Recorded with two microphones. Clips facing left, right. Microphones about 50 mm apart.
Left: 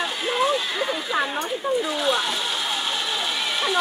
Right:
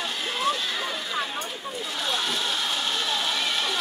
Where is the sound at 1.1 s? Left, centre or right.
Left.